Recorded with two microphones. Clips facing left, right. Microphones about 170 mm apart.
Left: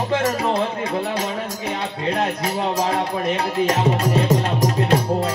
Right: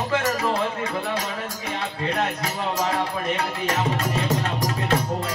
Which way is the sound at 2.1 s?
30° left (ahead or behind).